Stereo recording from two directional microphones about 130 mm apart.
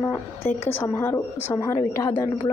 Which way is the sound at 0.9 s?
20° left (ahead or behind).